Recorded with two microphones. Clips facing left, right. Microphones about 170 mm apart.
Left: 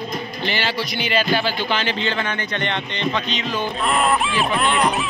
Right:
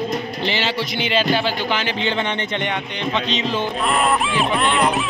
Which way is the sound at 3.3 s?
30° right (ahead or behind).